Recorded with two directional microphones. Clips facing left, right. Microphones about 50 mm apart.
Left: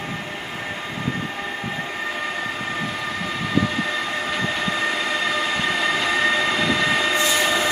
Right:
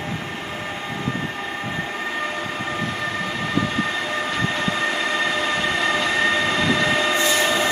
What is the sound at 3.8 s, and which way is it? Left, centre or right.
Train, centre.